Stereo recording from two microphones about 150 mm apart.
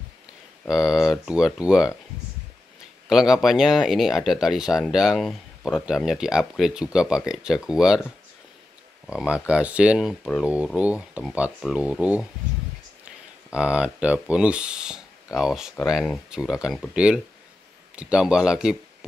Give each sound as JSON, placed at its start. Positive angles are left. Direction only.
{"t": 0.7, "sound": "speech", "side_deg": -5}
{"t": 3.1, "sound": "speech", "side_deg": 0}
{"t": 9.0, "sound": "speech", "side_deg": -5}
{"t": 13.5, "sound": "speech", "side_deg": -5}